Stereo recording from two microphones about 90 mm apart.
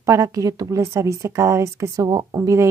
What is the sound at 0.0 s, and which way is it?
A woman's voice, 35° right (ahead or behind).